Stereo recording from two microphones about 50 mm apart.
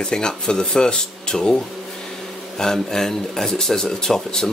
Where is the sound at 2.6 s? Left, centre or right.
Centre.